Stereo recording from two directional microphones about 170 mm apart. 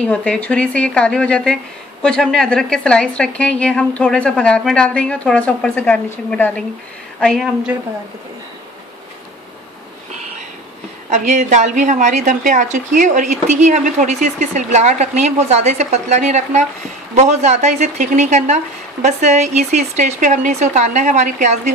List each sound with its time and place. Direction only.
0.0 s a woman's voice: 5° left (ahead or behind)
11.1 s a woman's voice: 45° right (ahead or behind)